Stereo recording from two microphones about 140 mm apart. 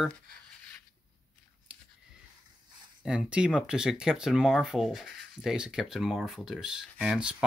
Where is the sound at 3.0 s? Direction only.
5° right (ahead or behind).